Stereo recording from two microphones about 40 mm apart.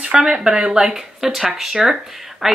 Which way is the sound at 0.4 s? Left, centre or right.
Centre.